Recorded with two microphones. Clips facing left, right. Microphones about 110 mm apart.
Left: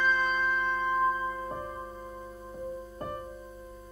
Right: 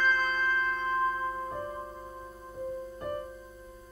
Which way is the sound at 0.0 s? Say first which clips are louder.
Left 1 dB; 5° left (ahead or behind).